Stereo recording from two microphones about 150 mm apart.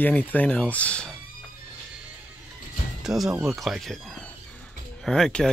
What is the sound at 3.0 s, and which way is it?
Speech, centre (ahead or behind).